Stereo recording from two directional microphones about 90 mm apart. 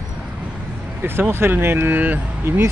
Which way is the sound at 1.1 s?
25° right (ahead or behind).